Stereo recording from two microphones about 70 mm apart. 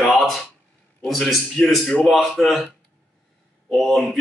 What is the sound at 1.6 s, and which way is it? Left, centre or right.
Speech, centre.